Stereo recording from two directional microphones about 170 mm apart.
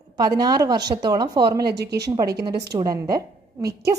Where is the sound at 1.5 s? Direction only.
75° right (ahead or behind).